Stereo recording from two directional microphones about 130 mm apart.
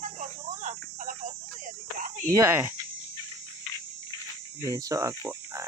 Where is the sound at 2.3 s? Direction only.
20° right (ahead or behind).